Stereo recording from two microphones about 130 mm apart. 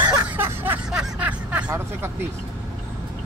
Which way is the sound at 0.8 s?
10° right (ahead or behind).